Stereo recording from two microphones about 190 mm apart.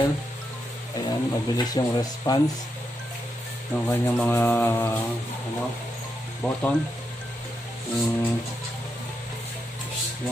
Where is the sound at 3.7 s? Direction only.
10° left (ahead or behind).